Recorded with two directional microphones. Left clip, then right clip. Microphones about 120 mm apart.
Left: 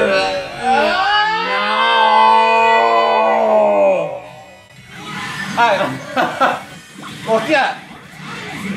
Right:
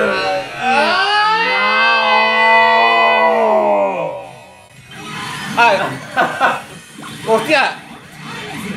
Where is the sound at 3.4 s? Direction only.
50° left (ahead or behind).